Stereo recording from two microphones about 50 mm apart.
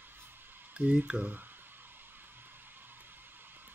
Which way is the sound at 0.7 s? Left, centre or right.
Centre.